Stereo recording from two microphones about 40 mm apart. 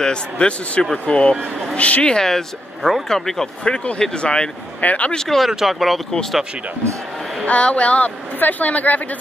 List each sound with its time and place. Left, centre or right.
0.0 s a man's voice: left
2.1 s speech: centre
3.6 s a man's voice: left
4.7 s speech: left
5.1 s speech: centre
5.7 s speech: centre
7.4 s speech: left
8.4 s a woman's voice: left